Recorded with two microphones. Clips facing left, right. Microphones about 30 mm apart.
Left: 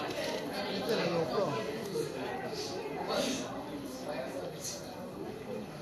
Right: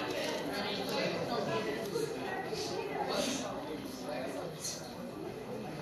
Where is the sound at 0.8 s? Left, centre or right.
Centre.